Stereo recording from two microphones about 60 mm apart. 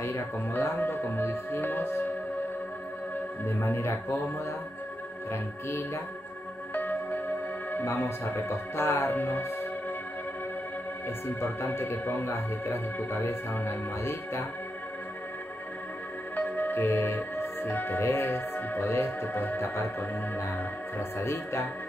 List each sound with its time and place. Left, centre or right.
0.0 s speech: left
3.4 s speech: left
5.3 s speech: left
6.7 s music: left
7.8 s speech: left
11.2 s speech: left
16.3 s speech: left